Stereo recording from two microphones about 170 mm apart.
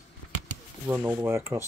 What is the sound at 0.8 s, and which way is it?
Speech, 10° right (ahead or behind).